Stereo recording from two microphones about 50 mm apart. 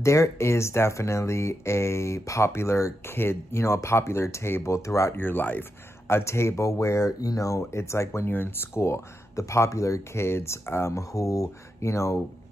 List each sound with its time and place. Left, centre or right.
0.0 s speech: left
5.1 s speech: left
6.0 s speech: left
8.3 s speech: left